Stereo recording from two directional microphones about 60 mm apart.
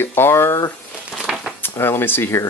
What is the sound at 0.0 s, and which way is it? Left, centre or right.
Speech, left.